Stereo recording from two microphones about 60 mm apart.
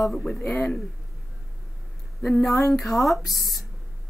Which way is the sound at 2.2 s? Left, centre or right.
Centre.